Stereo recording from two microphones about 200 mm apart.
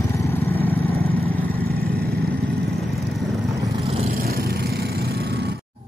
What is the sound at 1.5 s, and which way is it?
Vehicle, 50° right (ahead or behind).